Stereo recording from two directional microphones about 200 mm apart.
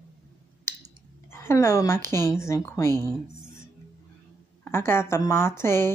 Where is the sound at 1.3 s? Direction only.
15° left (ahead or behind).